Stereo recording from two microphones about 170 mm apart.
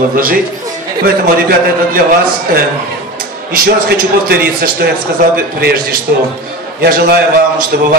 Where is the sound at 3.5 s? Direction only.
60° right (ahead or behind).